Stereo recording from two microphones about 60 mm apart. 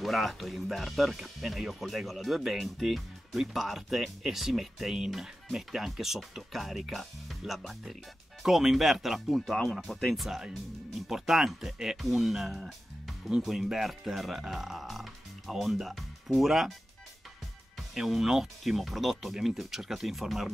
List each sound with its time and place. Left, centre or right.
0.0 s speech: centre
9.6 s speech: centre
17.9 s speech: centre